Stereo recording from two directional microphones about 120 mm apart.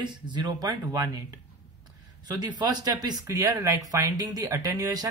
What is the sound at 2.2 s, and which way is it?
Speech, 35° right (ahead or behind).